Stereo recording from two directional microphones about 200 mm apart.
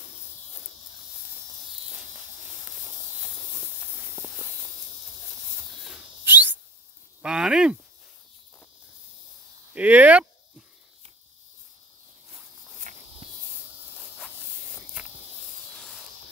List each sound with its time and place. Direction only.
4.1 s hiss: 5° left (ahead or behind)
5.9 s a sound: 10° right (ahead or behind)
9.8 s speech: 5° right (ahead or behind)
12.9 s walk: 40° right (ahead or behind)
13.5 s walk: centre (ahead or behind)
15.7 s a sound: centre (ahead or behind)